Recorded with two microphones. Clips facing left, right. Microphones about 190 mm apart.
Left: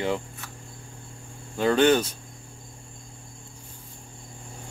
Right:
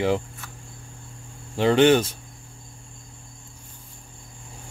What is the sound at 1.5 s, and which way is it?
Speech, 25° right (ahead or behind).